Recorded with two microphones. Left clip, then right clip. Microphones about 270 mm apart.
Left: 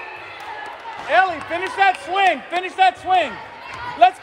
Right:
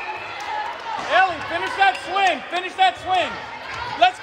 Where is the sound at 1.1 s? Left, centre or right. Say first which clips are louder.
Left 1 dB; left.